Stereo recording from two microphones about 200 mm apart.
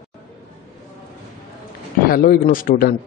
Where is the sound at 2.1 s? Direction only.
45° left (ahead or behind).